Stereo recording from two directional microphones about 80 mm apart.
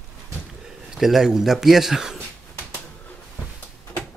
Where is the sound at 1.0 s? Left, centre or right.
Centre.